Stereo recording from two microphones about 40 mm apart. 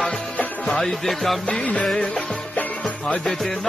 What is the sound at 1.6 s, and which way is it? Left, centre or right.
Music, left.